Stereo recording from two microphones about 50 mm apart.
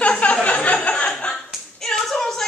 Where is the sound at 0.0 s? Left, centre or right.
Left.